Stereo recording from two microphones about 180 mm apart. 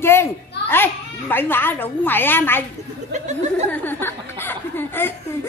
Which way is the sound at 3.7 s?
10° left (ahead or behind).